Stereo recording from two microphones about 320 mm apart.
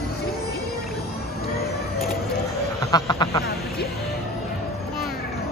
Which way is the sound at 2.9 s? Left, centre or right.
Centre.